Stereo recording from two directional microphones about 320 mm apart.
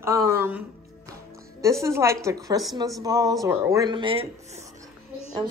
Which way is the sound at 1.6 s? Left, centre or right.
Centre.